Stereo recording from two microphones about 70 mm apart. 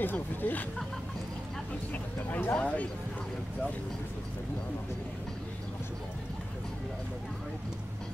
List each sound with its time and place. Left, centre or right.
0.0 s speech: left
2.5 s speech: centre